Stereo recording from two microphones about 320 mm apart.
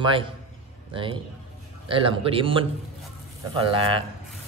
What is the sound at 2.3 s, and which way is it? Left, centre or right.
Mantra, centre.